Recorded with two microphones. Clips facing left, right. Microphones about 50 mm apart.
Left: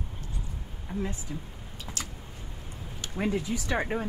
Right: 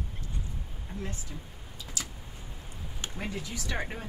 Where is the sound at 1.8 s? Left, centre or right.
Left.